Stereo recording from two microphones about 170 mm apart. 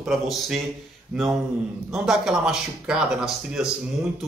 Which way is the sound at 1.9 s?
5° right (ahead or behind).